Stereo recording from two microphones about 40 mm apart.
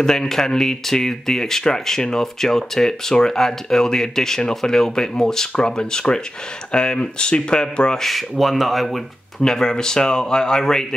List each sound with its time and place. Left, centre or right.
0.0 s speech: centre
8.0 s speech: centre
9.4 s speech: centre